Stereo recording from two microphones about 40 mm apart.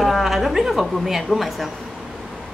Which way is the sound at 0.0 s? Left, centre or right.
Centre.